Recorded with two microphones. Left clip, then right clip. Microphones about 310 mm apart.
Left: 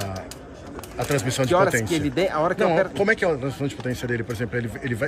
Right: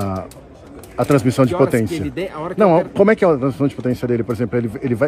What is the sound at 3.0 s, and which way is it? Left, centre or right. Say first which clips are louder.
Speech: right 7 dB; centre.